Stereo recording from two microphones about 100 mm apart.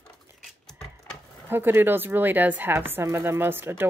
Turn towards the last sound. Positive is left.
turn(degrees=-20)  # may be behind; listen again after turning